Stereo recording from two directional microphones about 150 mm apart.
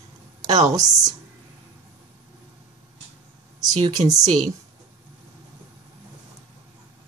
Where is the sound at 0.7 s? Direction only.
25° right (ahead or behind).